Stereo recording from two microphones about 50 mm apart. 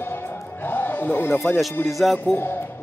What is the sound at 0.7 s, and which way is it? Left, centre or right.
Music, left.